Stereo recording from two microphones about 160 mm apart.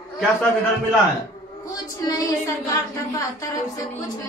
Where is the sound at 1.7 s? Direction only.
20° left (ahead or behind).